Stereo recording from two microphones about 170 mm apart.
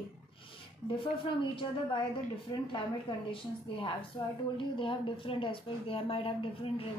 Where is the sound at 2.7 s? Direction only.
30° left (ahead or behind).